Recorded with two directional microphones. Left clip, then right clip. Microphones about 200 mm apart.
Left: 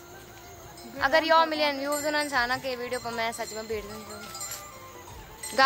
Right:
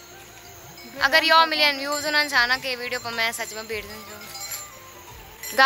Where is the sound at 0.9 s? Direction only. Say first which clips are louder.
Right 5 dB; 15° left (ahead or behind).